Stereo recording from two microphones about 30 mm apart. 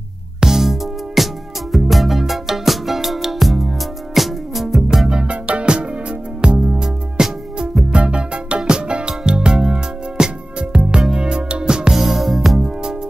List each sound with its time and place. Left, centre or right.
0.4 s music: centre
4.9 s music: right
5.2 s music: right
6.8 s music: right
7.9 s music: right
10.7 s music: right
11.9 s music: centre
12.5 s music: right